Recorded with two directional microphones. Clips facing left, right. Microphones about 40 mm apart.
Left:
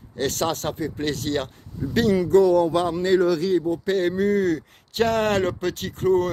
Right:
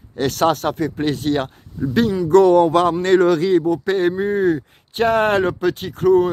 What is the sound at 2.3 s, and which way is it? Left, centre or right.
Speech, right.